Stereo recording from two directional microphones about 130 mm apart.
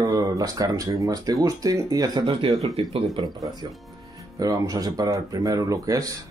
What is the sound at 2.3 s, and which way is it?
Speech, 45° right (ahead or behind).